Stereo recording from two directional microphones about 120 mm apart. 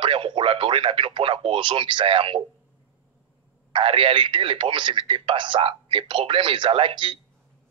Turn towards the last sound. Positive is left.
turn(degrees=-45)  # may be behind; listen again after turning